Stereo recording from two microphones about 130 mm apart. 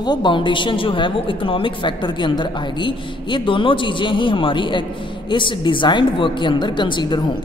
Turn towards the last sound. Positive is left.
turn(degrees=35)  # may be behind; listen again after turning